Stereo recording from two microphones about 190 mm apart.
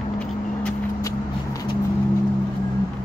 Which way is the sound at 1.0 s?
20° left (ahead or behind).